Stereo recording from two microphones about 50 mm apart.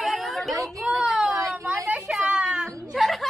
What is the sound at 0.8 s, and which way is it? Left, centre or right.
Child singing, centre.